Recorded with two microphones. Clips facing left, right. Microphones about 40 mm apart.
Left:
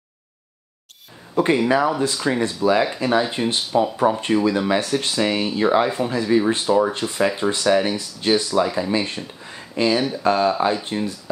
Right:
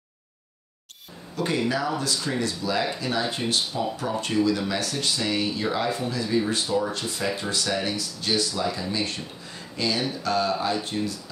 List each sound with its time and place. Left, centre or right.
1.3 s speech: left
3.3 s speech: left